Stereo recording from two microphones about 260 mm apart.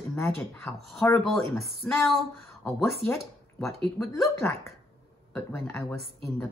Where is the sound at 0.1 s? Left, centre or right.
Centre.